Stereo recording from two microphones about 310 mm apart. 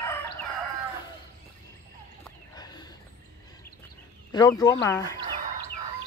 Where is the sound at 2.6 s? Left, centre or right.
Centre.